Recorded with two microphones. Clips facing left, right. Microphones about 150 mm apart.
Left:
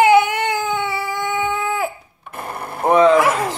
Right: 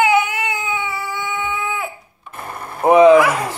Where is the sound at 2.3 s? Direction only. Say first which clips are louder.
Left 2 dB; 60° left (ahead or behind).